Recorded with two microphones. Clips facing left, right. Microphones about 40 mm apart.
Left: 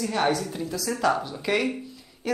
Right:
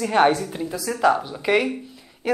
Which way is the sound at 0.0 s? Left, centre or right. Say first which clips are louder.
Right 6 dB; right.